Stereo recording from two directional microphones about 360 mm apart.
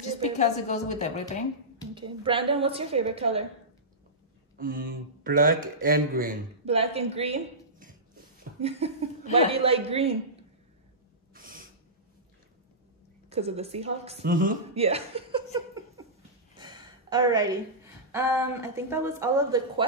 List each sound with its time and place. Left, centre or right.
0.2 s speech: centre
2.0 s a woman's voice: centre
4.6 s a woman's voice: right
11.3 s snort: right
13.3 s a woman's voice: centre
16.5 s a sound: centre
18.1 s a woman's voice: centre